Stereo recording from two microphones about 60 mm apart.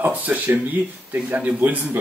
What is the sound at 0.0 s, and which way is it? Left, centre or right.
Speech, right.